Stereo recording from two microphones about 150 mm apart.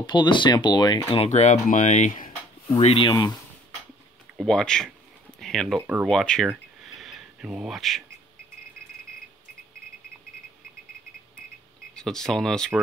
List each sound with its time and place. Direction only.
0.0 s speech: 30° left (ahead or behind)
1.2 s speech: 50° left (ahead or behind)
2.8 s speech: 40° left (ahead or behind)
3.1 s speech: 25° left (ahead or behind)
4.4 s speech: 5° left (ahead or behind)
5.4 s a sound: centre (ahead or behind)
5.8 s speech: 10° right (ahead or behind)
6.0 s speech: 5° left (ahead or behind)
11.9 s speech: 5° left (ahead or behind)